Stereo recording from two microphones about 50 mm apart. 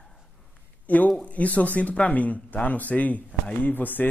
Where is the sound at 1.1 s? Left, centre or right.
Left.